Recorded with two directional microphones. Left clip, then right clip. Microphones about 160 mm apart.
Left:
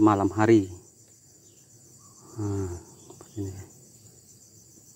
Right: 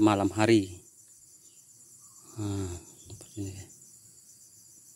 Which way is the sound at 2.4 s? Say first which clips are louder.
Left 4 dB; 30° right (ahead or behind).